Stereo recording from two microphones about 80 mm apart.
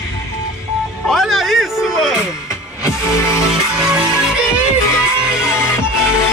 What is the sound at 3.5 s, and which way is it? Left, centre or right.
Music, centre.